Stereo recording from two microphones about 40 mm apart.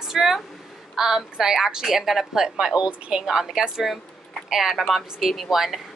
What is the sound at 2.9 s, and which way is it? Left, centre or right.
Speech, right.